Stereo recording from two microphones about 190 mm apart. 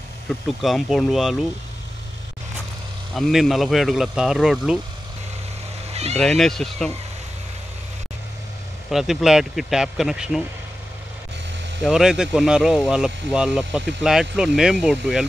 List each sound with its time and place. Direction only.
0.5 s speech: centre (ahead or behind)
3.2 s speech: centre (ahead or behind)
5.9 s vehicle: 35° right (ahead or behind)
6.1 s speech: centre (ahead or behind)
8.9 s speech: centre (ahead or behind)
11.8 s speech: 5° right (ahead or behind)